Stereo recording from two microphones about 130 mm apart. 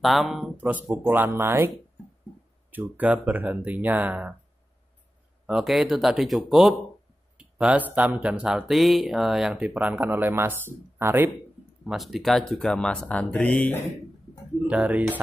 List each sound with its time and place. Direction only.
0.0 s speech: centre (ahead or behind)
1.1 s speech: 15° right (ahead or behind)
2.7 s speech: 10° right (ahead or behind)
5.5 s speech: 5° right (ahead or behind)
11.8 s speech: centre (ahead or behind)
14.7 s speech: 10° right (ahead or behind)